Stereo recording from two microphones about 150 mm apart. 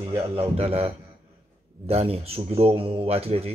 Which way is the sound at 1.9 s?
40° right (ahead or behind).